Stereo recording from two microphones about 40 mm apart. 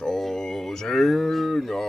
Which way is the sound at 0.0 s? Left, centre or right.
Centre.